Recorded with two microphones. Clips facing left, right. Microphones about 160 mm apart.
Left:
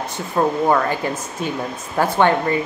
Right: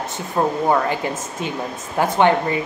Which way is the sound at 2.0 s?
15° right (ahead or behind).